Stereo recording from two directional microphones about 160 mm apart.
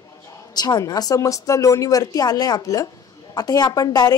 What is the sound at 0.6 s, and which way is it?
A woman's voice, 25° left (ahead or behind).